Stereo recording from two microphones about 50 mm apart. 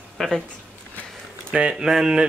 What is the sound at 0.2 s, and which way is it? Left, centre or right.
Speech, centre.